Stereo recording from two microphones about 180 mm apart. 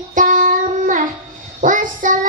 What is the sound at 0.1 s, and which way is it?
Child singing, 45° right (ahead or behind).